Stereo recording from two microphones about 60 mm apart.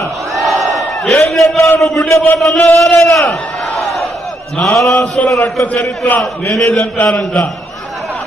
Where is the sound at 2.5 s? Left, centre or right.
Centre.